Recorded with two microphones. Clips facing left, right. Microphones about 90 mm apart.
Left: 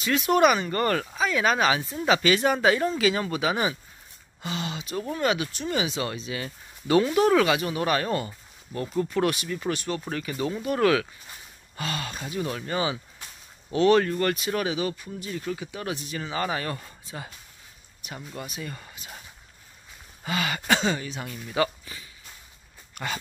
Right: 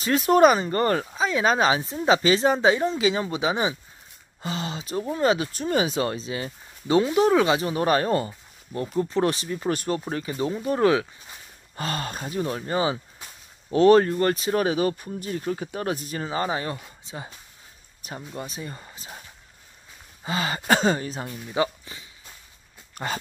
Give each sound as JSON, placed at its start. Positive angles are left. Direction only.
{"t": 0.0, "sound": "speech", "side_deg": -35}
{"t": 4.4, "sound": "speech", "side_deg": -35}
{"t": 10.0, "sound": "speech", "side_deg": -25}
{"t": 11.7, "sound": "speech", "side_deg": -40}
{"t": 18.3, "sound": "speech", "side_deg": -25}
{"t": 20.2, "sound": "speech", "side_deg": -30}
{"t": 21.5, "sound": "speech", "side_deg": -20}
{"t": 23.0, "sound": "speech", "side_deg": -35}